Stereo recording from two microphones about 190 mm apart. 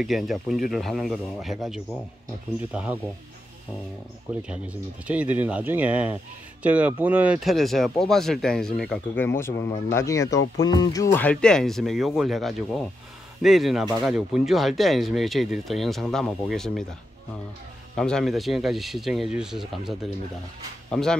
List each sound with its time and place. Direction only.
0.0 s speech: centre (ahead or behind)
4.3 s speech: 5° right (ahead or behind)
17.9 s speech: 5° left (ahead or behind)